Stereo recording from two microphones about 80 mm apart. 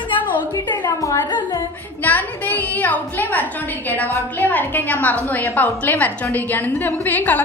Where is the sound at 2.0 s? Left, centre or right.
Left.